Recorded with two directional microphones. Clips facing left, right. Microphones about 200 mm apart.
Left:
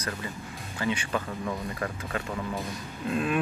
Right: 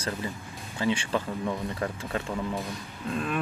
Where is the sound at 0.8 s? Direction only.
30° right (ahead or behind).